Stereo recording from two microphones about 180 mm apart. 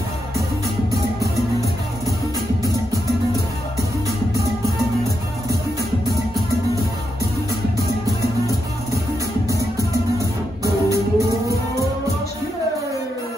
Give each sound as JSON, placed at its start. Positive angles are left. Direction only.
{"t": 9.5, "sound": "music", "side_deg": -15}